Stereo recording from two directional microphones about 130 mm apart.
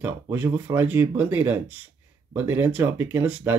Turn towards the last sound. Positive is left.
turn(degrees=-15)  # may be behind; listen again after turning